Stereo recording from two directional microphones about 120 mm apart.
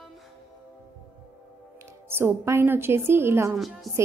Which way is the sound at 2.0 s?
20° right (ahead or behind).